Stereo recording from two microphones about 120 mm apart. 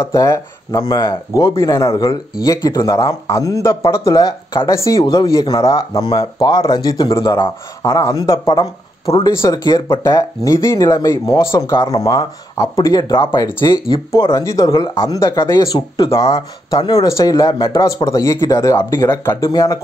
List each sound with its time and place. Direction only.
0.0 s speech: 25° left (ahead or behind)
13.7 s speech: 30° left (ahead or behind)